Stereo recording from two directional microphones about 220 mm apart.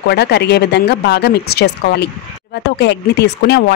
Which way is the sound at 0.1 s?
50° left (ahead or behind).